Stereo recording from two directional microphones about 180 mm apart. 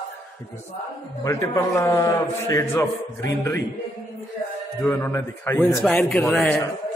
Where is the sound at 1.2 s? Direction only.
20° left (ahead or behind).